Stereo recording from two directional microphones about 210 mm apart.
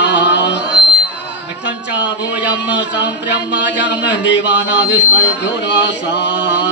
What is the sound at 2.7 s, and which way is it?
A man's voice, 55° left (ahead or behind).